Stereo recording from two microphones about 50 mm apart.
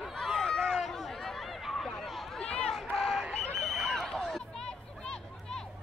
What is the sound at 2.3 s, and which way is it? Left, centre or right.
Run, centre.